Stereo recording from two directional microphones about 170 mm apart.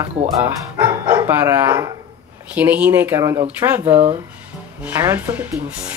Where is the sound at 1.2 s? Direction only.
15° right (ahead or behind).